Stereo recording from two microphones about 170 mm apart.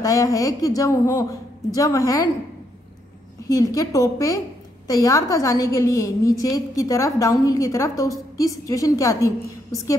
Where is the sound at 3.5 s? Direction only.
20° left (ahead or behind).